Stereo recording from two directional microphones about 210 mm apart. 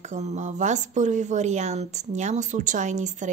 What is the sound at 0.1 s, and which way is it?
A woman's voice, 35° right (ahead or behind).